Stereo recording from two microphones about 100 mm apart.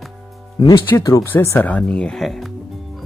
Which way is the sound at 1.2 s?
25° left (ahead or behind).